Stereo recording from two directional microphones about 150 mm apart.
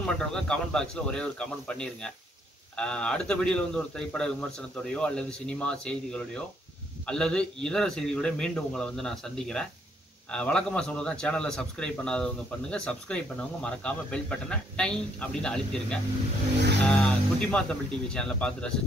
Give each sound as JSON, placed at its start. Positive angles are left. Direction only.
{"t": 0.0, "sound": "a man's voice", "side_deg": 5}